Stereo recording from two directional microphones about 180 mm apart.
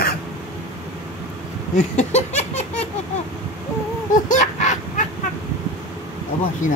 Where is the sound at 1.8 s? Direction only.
40° left (ahead or behind).